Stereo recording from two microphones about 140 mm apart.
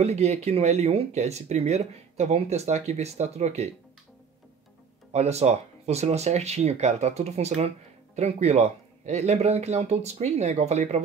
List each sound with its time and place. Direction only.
0.0 s speech: 50° right (ahead or behind)
5.1 s speech: 50° right (ahead or behind)